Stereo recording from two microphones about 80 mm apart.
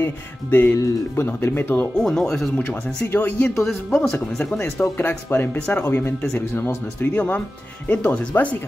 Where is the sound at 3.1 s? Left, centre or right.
Left.